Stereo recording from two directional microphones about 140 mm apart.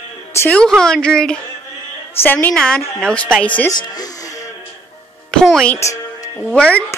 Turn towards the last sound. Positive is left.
turn(degrees=10)  # may be behind; listen again after turning